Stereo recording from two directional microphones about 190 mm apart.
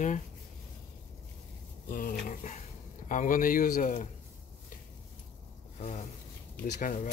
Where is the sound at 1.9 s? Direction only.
50° left (ahead or behind).